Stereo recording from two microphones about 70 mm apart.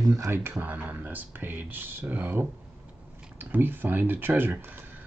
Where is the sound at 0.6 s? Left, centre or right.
Right.